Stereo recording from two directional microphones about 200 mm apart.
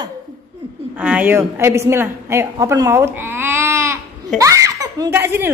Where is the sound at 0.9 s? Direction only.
5° right (ahead or behind).